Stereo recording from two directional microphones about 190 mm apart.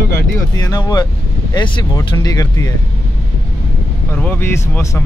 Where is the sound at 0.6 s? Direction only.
20° left (ahead or behind).